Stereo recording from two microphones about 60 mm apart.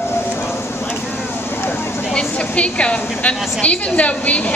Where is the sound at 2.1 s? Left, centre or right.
Centre.